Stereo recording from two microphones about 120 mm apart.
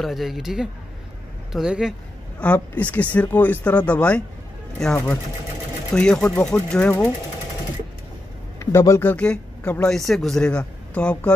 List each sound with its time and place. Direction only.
0.0 s speech: centre (ahead or behind)
2.4 s a man's voice: 10° left (ahead or behind)
5.9 s a man's voice: 5° left (ahead or behind)
8.5 s speech: 25° left (ahead or behind)
9.1 s a man's voice: 10° left (ahead or behind)